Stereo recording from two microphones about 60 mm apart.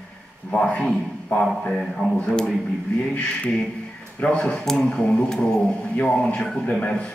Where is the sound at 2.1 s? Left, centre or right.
Centre.